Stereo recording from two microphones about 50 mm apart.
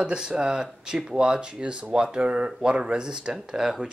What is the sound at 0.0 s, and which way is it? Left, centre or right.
Speech, centre.